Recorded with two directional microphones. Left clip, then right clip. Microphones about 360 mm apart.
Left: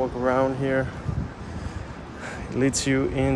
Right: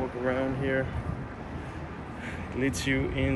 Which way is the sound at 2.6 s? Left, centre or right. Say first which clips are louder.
Left 6 dB; left.